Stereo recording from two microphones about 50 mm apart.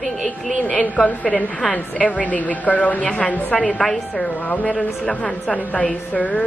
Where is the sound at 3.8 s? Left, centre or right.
Centre.